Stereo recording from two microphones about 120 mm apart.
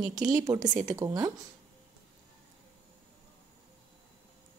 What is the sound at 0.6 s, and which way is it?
Speech, 90° right.